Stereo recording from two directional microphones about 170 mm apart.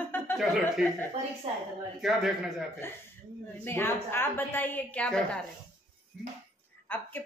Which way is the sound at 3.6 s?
15° left (ahead or behind).